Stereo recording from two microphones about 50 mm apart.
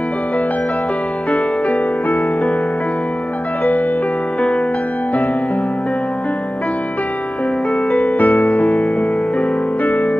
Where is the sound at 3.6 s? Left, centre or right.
Left.